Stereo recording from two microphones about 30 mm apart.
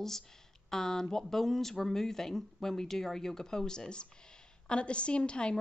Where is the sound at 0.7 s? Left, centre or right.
Centre.